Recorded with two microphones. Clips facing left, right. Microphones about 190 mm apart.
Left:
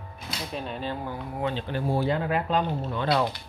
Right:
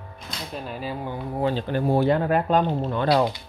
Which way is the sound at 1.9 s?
55° right (ahead or behind).